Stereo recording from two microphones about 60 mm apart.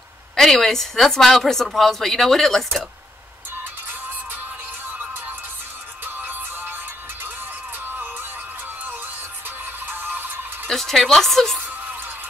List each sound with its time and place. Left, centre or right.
0.4 s a woman's voice: centre
6.0 s music: right
9.8 s music: right
10.7 s a woman's voice: centre